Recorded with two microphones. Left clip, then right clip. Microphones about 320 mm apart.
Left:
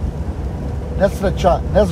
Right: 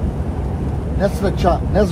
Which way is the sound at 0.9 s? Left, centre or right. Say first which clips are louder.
Left 3 dB; left.